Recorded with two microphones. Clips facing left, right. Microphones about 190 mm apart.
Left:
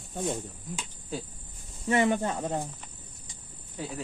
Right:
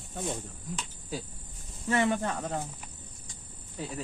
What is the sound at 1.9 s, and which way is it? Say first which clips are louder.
Speech: left 2 dB; 20° left (ahead or behind).